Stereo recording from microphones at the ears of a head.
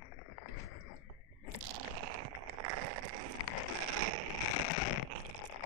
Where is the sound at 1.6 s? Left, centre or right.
Right.